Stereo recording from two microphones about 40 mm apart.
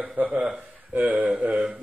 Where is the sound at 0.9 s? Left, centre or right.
Right.